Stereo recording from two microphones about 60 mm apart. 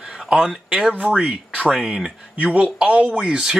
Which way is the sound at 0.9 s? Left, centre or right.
Centre.